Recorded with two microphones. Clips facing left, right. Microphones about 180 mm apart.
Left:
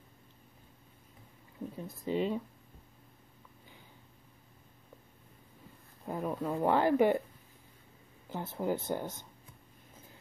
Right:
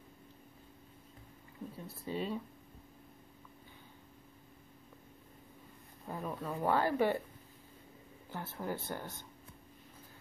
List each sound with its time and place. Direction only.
1.9 s speech: 15° left (ahead or behind)
6.0 s speech: 15° left (ahead or behind)
8.3 s speech: 20° left (ahead or behind)